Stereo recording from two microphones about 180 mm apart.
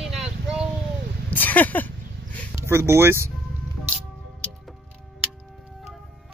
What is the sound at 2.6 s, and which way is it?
Speech, 15° right (ahead or behind).